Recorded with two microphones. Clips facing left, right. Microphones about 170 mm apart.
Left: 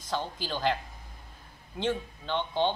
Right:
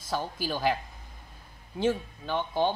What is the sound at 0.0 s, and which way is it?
Speech, 10° right (ahead or behind).